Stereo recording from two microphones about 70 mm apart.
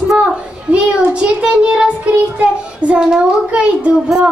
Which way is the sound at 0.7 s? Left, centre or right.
Centre.